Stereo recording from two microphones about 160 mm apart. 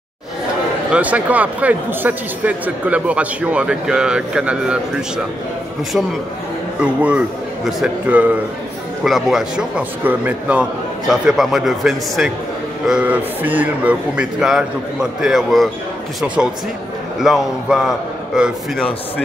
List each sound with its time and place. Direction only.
0.9 s a man's voice: 10° right (ahead or behind)
6.8 s a man's voice: 10° right (ahead or behind)
17.2 s a man's voice: centre (ahead or behind)